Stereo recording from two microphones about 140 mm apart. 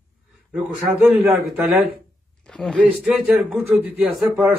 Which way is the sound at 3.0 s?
10° right (ahead or behind).